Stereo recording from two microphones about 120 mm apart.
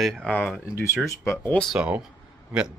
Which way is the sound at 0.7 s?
25° left (ahead or behind).